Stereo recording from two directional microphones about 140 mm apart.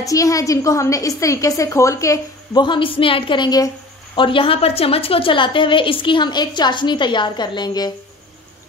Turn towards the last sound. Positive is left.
turn(degrees=30)  # may be behind; listen again after turning